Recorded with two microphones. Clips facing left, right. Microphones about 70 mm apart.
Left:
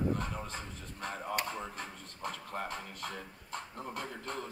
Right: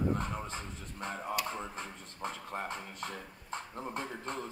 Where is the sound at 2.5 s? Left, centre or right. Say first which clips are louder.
Even; right.